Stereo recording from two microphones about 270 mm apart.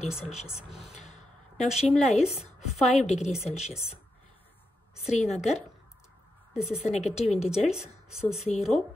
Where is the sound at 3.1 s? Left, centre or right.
Left.